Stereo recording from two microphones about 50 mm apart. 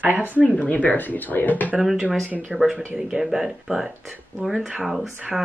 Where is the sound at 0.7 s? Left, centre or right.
Left.